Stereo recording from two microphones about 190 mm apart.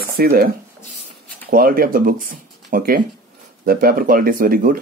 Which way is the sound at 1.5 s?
50° right (ahead or behind).